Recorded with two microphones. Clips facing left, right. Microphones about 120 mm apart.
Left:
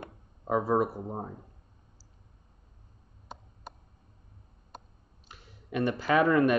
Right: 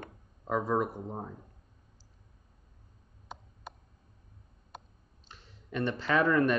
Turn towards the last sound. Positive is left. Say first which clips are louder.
# left 3 dB
turn(degrees=10)  # may be behind; listen again after turning